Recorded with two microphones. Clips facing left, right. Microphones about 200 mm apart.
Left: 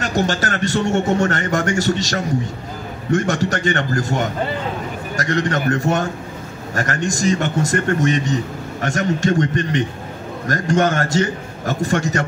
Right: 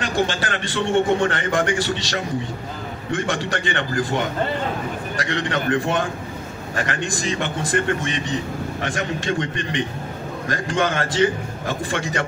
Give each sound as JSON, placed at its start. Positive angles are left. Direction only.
{"t": 0.0, "sound": "a man's voice", "side_deg": 45}